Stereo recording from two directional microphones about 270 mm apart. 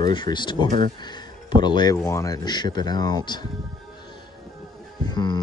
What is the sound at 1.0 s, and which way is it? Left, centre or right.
Speech, centre.